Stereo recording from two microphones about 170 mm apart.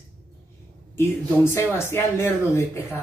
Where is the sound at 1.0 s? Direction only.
15° left (ahead or behind).